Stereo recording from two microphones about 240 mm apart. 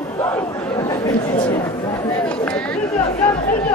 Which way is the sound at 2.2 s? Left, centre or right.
Centre.